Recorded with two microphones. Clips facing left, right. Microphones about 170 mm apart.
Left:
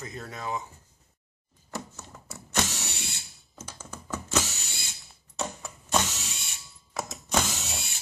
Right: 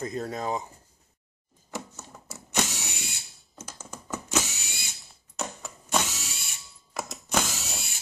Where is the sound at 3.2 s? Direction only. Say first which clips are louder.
Even; centre (ahead or behind).